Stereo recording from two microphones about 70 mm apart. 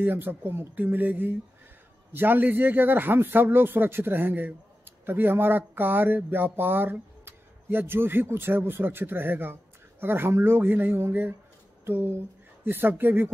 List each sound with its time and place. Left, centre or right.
0.0 s a man's voice: right